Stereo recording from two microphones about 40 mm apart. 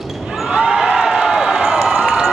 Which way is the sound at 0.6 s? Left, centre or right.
Centre.